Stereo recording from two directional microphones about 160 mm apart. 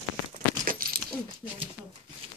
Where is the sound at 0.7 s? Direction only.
65° right (ahead or behind).